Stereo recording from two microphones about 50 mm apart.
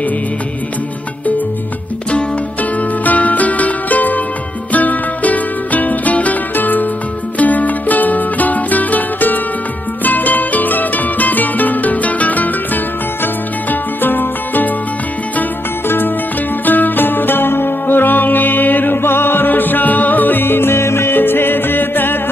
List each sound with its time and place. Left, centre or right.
3.0 s music: left
16.6 s music: left